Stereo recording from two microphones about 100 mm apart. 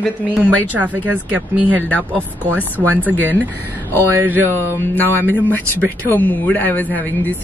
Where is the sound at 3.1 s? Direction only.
20° right (ahead or behind).